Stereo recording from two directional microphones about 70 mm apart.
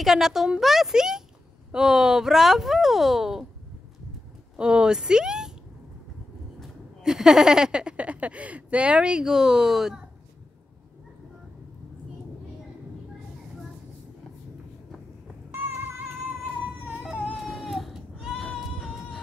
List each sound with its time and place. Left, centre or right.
0.0 s speech: centre
4.6 s speech: centre
6.6 s speech: centre
17.0 s a sound: centre
17.4 s baby cry: centre
18.4 s music: centre